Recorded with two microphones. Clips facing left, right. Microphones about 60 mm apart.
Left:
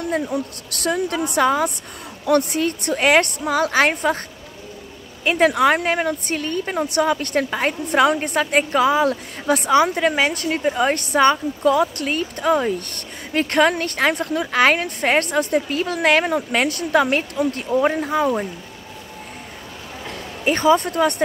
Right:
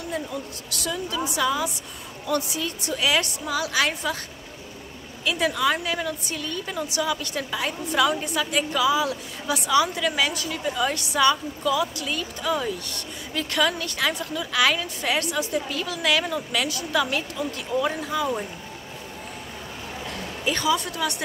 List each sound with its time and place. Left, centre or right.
0.1 s a woman's voice: left
5.2 s a woman's voice: left
20.4 s speech: left